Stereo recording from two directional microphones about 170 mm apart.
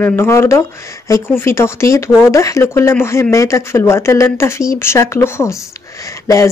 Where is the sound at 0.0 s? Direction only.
15° left (ahead or behind).